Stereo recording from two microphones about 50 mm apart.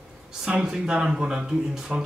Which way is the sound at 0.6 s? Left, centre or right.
Centre.